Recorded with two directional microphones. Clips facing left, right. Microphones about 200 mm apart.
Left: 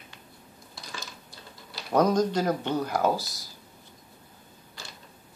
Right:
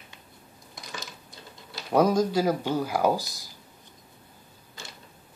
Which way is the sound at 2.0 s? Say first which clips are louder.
Right 1 dB; 10° right (ahead or behind).